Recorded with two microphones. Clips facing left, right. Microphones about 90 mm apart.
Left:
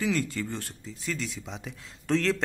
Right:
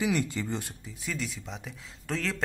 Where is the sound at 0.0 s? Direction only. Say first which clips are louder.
Even; 15° right (ahead or behind).